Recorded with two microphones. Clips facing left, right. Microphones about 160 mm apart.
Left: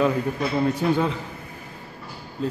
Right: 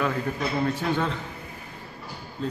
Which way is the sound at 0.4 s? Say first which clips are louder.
Left 3 dB; 10° left (ahead or behind).